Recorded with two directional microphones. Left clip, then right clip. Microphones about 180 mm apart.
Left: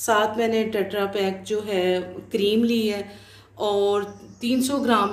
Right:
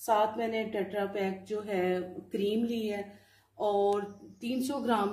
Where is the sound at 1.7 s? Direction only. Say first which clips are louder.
Left 7 dB; 30° right (ahead or behind).